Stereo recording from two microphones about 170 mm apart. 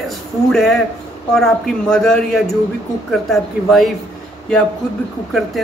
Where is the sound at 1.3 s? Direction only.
5° left (ahead or behind).